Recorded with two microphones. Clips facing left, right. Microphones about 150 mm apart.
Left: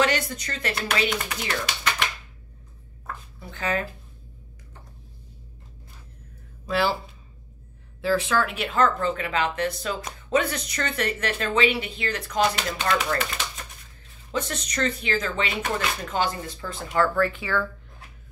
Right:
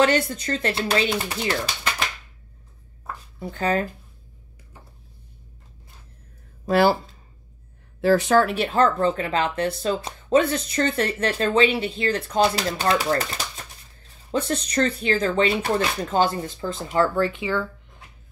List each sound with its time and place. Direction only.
0.0 s speech: 30° right (ahead or behind)
3.4 s speech: 35° right (ahead or behind)
6.6 s speech: 45° right (ahead or behind)
8.0 s speech: 40° right (ahead or behind)
14.5 s speech: 30° right (ahead or behind)